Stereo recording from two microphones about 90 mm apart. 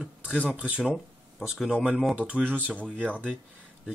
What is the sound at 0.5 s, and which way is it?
Speech, 15° right (ahead or behind).